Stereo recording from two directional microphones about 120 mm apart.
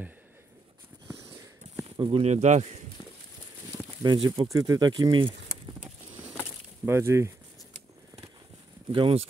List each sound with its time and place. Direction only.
2.0 s speech: 45° right (ahead or behind)
2.2 s speech: 75° right (ahead or behind)
4.0 s speech: 40° right (ahead or behind)
6.9 s speech: 20° right (ahead or behind)
8.9 s speech: 45° right (ahead or behind)